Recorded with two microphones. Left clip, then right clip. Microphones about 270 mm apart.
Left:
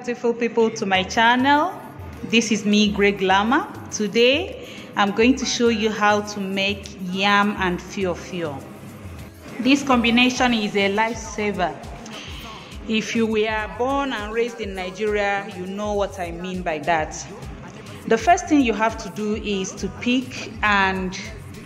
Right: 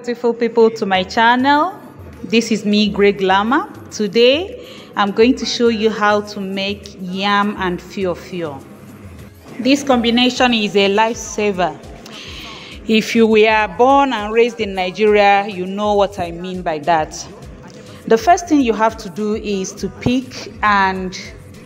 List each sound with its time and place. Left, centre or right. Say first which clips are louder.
0.0 s a woman's voice: right 5 dB; centre
9.6 s a woman's voice: right 4 dB; centre
12.8 s a woman's voice: right 9 dB; centre